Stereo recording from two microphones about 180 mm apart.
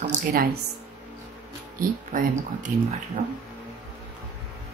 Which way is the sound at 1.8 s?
50° right (ahead or behind).